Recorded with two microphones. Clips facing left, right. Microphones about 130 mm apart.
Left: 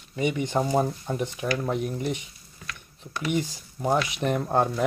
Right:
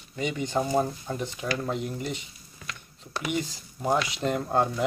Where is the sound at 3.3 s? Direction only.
20° left (ahead or behind).